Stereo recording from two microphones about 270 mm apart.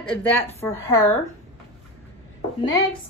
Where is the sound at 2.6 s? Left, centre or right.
Centre.